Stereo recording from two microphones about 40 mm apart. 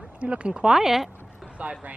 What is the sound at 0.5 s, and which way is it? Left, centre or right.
Speech, centre.